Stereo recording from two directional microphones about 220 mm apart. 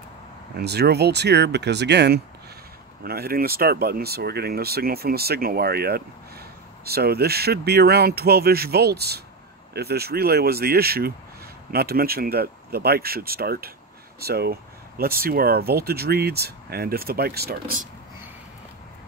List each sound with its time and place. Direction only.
0.6 s speech: 45° right (ahead or behind)